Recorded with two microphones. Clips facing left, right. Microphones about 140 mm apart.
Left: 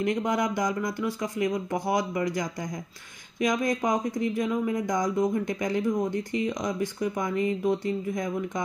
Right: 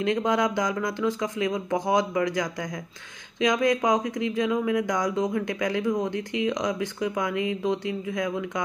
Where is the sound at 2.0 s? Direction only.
90° right.